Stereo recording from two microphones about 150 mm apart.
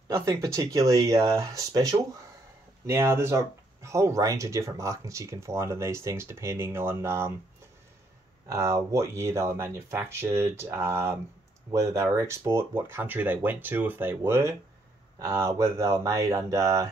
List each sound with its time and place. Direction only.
0.1 s speech: 20° right (ahead or behind)
8.5 s speech: 20° right (ahead or behind)